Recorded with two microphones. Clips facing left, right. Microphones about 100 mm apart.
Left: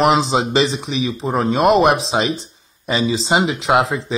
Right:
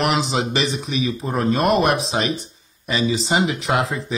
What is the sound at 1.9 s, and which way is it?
Speech, 30° left (ahead or behind).